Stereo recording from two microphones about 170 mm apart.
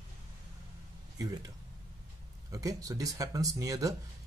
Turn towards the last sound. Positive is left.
turn(degrees=-20)  # may be behind; listen again after turning